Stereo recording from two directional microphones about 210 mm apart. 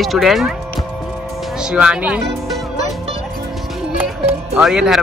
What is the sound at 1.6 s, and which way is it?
Speech, 5° right (ahead or behind).